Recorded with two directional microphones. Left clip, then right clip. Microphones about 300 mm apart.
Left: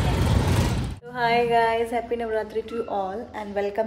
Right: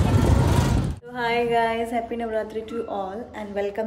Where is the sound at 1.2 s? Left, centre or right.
Centre.